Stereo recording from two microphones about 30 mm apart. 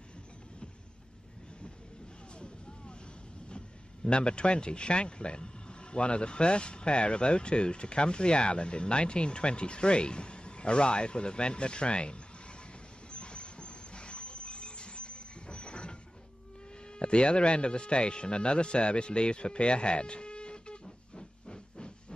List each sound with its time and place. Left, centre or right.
2.3 s vehicle: left
3.4 s a man's voice: left
13.1 s a sound: left
17.0 s a man's voice: left
20.8 s hiss: left